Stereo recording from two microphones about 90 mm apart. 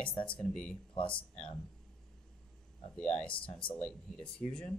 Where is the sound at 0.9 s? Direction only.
70° left (ahead or behind).